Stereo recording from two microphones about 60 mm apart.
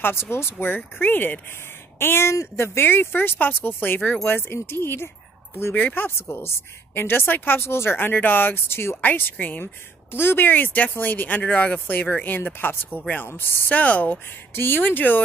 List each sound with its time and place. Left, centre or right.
0.0 s speech: left
2.0 s speech: left
9.0 s speech: left
13.7 s speech: left
14.5 s speech: left